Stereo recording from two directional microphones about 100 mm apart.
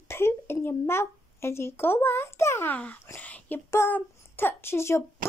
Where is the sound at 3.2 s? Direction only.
20° left (ahead or behind).